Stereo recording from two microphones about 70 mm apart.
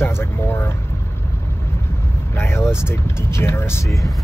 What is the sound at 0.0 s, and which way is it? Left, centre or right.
Speech, left.